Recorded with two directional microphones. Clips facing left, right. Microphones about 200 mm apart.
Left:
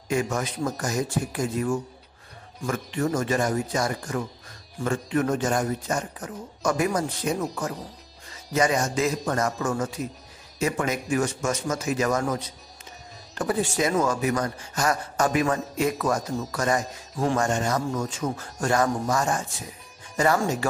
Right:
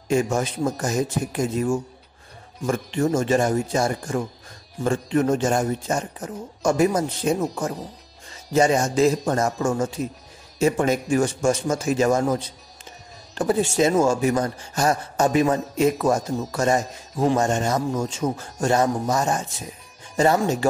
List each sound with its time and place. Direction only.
0.1 s speech: 25° right (ahead or behind)